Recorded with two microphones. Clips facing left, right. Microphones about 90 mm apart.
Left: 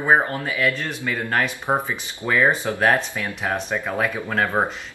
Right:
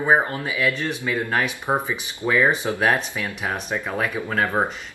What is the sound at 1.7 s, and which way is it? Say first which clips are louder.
Speech: left 1 dB; 5° left (ahead or behind).